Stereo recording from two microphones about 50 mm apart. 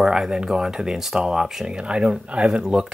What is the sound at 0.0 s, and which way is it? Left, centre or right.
Speech, centre.